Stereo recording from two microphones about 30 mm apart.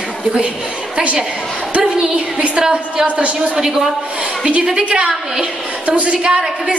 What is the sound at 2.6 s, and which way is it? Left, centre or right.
Speech, right.